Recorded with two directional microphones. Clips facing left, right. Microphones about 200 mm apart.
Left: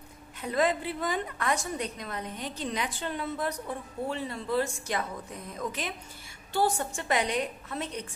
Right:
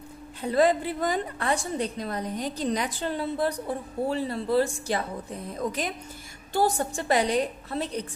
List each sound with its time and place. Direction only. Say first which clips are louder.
0.4 s a woman's voice: right 5 dB; 35° right (ahead or behind)